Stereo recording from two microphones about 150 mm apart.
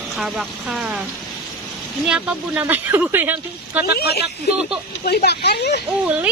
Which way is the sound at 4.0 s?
90° left.